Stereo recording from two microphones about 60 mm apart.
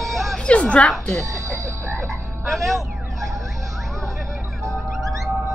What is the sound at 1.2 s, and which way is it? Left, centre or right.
Speech, right.